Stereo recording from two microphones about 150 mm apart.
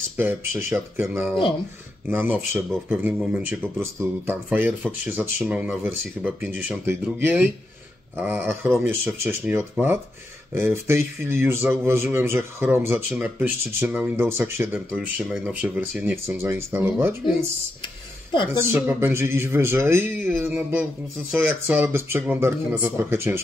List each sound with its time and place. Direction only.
0.2 s speech: 15° right (ahead or behind)
2.0 s speech: 15° right (ahead or behind)
15.0 s speech: 5° right (ahead or behind)
17.8 s a sound: 30° left (ahead or behind)
18.5 s speech: 15° right (ahead or behind)